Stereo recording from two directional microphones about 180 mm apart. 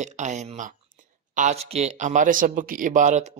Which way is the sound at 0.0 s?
40° right (ahead or behind).